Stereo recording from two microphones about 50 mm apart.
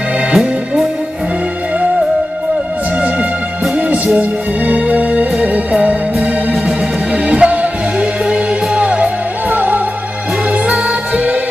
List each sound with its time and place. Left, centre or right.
0.3 s music: centre
3.9 s music: right
7.2 s music: right